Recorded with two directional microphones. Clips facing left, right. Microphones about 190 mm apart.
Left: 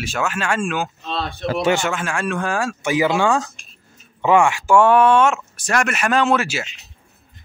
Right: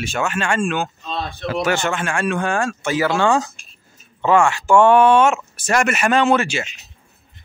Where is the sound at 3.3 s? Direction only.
Centre (ahead or behind).